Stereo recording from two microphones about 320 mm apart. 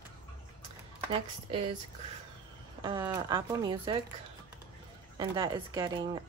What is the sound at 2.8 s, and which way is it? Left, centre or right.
Speech, centre.